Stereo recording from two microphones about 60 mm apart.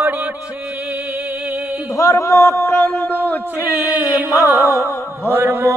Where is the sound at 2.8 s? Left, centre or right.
Left.